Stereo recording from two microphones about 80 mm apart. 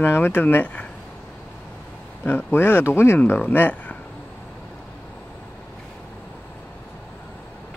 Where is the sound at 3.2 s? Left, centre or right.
Left.